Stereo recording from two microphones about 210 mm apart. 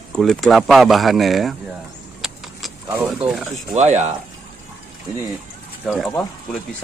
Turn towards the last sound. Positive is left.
turn(degrees=0)  # may be behind; listen again after turning